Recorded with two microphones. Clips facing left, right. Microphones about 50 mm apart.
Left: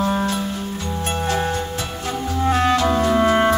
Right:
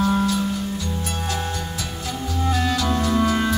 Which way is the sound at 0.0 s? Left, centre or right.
Left.